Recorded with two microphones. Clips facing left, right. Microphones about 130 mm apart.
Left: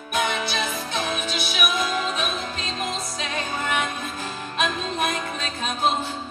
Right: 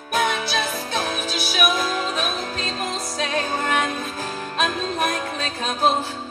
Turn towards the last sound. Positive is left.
turn(degrees=-45)  # may be behind; listen again after turning